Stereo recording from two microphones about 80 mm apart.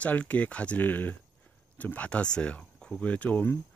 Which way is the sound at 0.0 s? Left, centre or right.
Centre.